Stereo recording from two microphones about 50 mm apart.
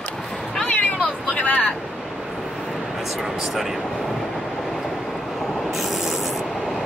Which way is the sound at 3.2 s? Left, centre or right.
Centre.